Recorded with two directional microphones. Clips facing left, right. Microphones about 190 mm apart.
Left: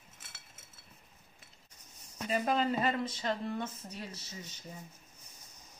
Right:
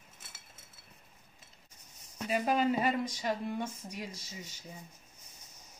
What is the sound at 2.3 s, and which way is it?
Speech, 10° right (ahead or behind).